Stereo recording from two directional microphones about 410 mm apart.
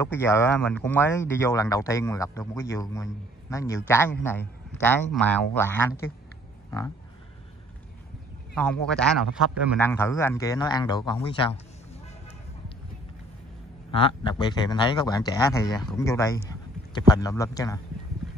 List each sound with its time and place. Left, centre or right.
0.0 s speech: centre
8.5 s speech: centre
14.0 s speech: centre